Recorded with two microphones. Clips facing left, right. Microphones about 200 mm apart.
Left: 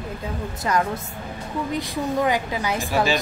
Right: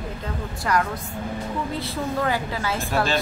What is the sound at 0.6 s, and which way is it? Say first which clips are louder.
Speech: left 1 dB; 20° left (ahead or behind).